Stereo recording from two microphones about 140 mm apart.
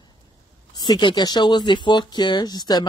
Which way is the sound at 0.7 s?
35° left (ahead or behind).